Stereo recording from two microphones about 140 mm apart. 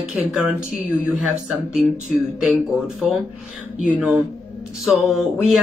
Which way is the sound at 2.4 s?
Centre (ahead or behind).